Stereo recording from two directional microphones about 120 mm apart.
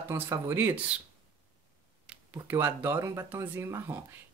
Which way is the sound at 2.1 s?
20° right (ahead or behind).